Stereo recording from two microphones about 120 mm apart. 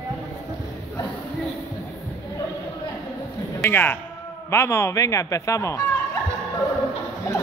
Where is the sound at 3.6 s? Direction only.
15° left (ahead or behind).